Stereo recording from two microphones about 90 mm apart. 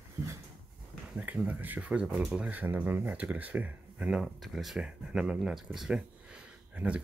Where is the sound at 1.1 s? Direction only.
15° right (ahead or behind).